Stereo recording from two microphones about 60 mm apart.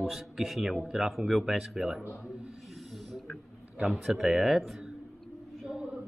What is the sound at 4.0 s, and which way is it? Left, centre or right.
Speech, centre.